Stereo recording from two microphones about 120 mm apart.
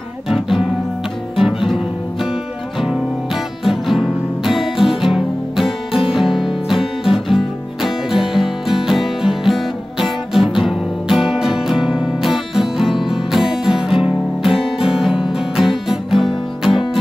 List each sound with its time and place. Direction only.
1.3 s music: centre (ahead or behind)
3.6 s music: centre (ahead or behind)